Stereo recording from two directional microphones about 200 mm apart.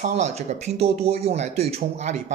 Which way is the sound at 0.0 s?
35° right (ahead or behind).